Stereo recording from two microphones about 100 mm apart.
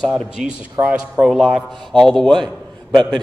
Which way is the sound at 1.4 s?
Centre (ahead or behind).